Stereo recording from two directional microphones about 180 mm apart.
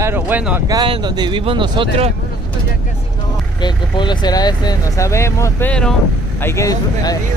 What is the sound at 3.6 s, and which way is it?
Speech, 25° left (ahead or behind).